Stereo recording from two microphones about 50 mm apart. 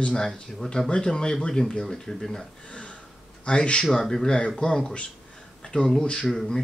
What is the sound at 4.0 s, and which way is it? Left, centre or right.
Speech, centre.